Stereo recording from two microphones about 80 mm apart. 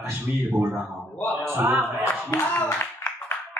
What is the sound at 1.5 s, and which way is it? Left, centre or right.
Speech, right.